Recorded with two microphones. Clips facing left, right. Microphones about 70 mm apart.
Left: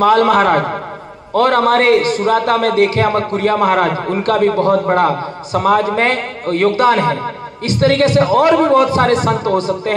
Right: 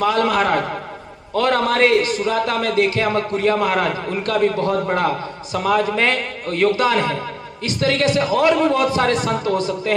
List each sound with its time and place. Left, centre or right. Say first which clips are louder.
0.0 s a man's voice: left 7 dB; left